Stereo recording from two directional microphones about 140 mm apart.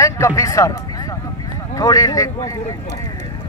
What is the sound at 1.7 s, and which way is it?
Speech, 25° left (ahead or behind).